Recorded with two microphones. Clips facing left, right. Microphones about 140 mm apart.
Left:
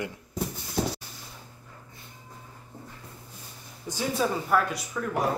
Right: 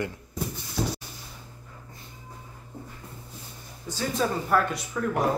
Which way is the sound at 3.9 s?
15° left (ahead or behind).